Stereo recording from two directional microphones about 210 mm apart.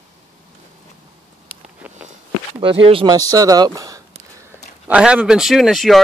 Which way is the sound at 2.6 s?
25° right (ahead or behind).